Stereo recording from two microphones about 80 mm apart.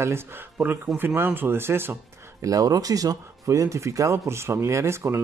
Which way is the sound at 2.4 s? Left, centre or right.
Right.